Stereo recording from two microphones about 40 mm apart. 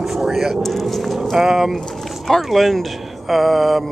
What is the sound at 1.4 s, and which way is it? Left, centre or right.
Speech, centre.